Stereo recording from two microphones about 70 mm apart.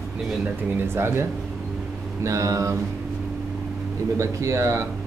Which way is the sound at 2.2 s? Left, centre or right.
Right.